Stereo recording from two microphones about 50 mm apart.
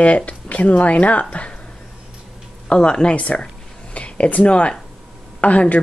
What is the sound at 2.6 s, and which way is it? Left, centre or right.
Speech, centre.